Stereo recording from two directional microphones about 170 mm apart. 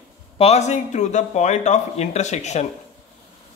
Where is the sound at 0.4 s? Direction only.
40° left (ahead or behind).